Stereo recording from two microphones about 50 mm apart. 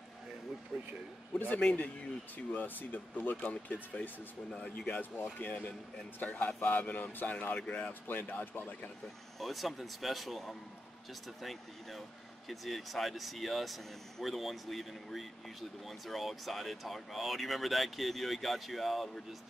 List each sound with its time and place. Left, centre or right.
0.7 s speech: centre
1.8 s speech: left
4.5 s speech: left
7.5 s speech: left
8.1 s speech: left
9.4 s speech: centre
12.4 s speech: centre